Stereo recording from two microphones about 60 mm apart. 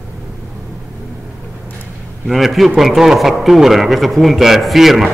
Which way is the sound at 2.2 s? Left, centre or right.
Centre.